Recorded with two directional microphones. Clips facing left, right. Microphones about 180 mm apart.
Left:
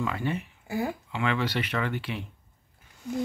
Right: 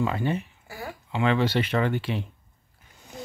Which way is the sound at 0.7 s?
20° left (ahead or behind).